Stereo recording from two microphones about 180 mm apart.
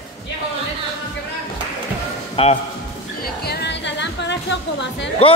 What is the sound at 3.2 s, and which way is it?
Music, 60° left (ahead or behind).